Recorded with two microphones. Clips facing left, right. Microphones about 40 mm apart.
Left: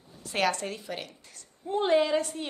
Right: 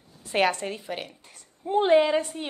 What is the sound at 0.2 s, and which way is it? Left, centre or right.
A woman's voice, right.